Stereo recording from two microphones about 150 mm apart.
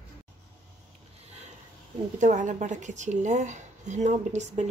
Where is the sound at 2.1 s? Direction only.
55° right (ahead or behind).